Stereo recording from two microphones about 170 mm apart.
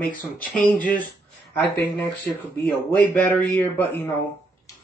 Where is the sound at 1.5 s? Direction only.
10° left (ahead or behind).